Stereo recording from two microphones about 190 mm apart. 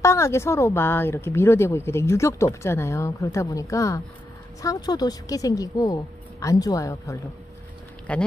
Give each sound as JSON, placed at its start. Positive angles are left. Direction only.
{"t": 0.0, "sound": "speech", "side_deg": 15}
{"t": 8.1, "sound": "speech", "side_deg": 5}